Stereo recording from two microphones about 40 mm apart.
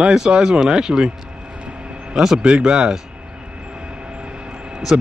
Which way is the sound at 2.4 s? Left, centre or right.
Right.